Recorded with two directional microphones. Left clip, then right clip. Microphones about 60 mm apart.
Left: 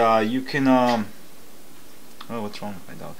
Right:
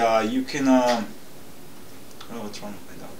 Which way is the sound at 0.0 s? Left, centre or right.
Right.